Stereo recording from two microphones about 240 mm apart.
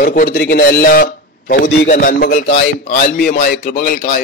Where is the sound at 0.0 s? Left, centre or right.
Left.